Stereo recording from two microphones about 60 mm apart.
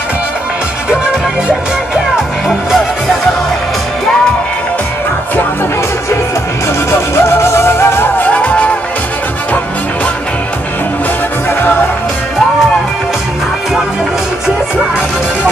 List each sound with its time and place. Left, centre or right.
6.9 s music: left
8.2 s music: left